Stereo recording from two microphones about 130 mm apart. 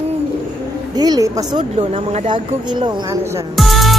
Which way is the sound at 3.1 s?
25° right (ahead or behind).